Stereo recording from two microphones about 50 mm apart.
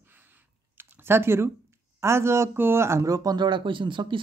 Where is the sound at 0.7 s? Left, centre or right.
Right.